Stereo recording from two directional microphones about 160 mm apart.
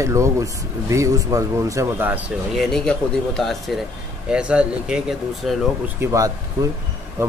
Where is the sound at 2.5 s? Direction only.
Centre (ahead or behind).